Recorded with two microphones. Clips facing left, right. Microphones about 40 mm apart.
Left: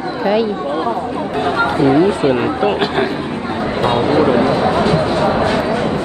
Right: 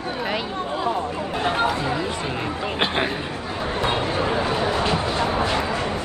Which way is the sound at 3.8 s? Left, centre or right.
Left.